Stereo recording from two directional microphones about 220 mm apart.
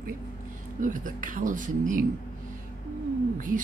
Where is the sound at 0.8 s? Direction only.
35° right (ahead or behind).